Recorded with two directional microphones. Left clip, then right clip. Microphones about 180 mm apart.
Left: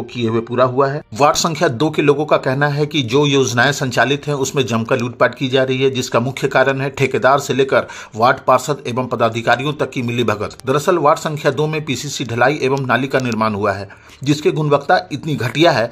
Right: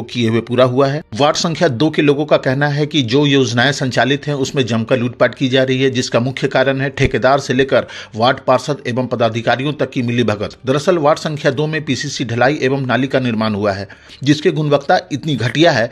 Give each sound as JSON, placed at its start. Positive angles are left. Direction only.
{"t": 0.2, "sound": "speech", "side_deg": -40}
{"t": 1.1, "sound": "speech", "side_deg": -25}